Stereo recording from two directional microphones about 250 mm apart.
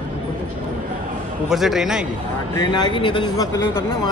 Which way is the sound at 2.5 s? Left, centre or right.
Centre.